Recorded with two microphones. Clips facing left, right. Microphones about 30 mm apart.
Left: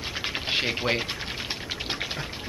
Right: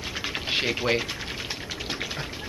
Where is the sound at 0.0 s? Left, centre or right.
Centre.